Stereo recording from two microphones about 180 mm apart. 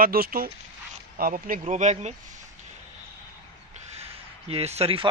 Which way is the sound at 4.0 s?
35° right (ahead or behind).